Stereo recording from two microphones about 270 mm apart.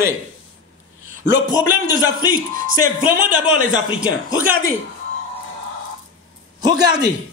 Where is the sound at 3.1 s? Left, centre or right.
Right.